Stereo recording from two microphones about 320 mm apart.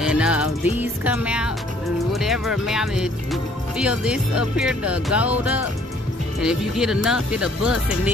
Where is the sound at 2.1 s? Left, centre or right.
Centre.